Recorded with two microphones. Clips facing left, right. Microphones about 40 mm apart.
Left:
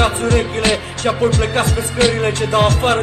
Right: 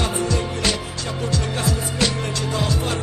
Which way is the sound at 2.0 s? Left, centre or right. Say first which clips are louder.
Left 11 dB; left.